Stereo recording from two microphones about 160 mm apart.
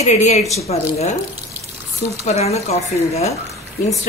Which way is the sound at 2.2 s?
40° left (ahead or behind).